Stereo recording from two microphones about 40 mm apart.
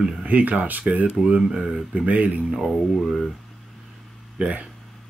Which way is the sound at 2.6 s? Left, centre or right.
Centre.